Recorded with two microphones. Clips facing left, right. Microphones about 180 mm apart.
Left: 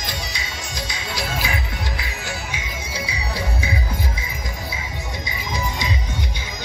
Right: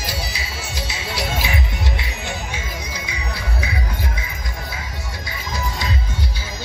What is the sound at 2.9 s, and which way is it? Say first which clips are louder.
Music: left 2 dB; 30° left (ahead or behind).